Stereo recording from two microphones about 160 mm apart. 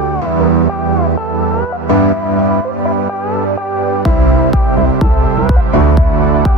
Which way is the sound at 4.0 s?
Centre (ahead or behind).